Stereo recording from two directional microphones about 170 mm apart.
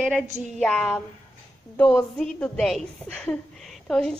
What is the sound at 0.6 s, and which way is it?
Speech, 5° left (ahead or behind).